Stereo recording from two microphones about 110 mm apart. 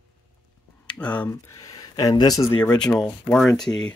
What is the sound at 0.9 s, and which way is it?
Speech, 10° left (ahead or behind).